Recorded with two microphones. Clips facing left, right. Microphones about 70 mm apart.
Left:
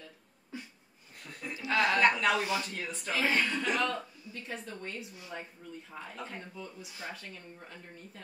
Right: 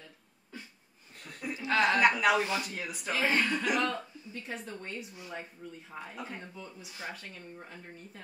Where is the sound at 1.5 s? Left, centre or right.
Right.